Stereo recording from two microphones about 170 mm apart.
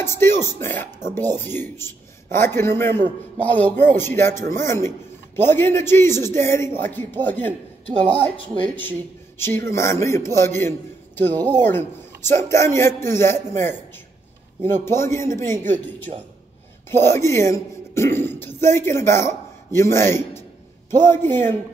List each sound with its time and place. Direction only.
0.0 s a man's voice: 15° left (ahead or behind)
9.4 s a man's voice: 15° left (ahead or behind)
16.1 s a man's voice: 50° right (ahead or behind)
16.9 s a man's voice: 15° left (ahead or behind)